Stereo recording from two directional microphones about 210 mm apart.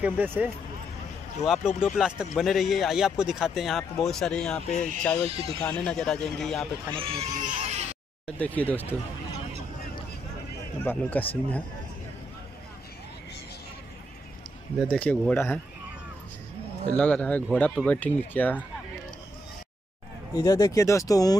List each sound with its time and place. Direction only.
0.0 s speech: 10° right (ahead or behind)
7.0 s speech: 30° right (ahead or behind)
8.4 s speech: 5° left (ahead or behind)
10.8 s speech: 10° left (ahead or behind)
14.8 s speech: 5° left (ahead or behind)
16.9 s speech: 5° left (ahead or behind)
20.3 s speech: 15° left (ahead or behind)